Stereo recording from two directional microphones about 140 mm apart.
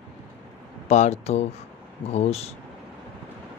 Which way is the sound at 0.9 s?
55° left (ahead or behind).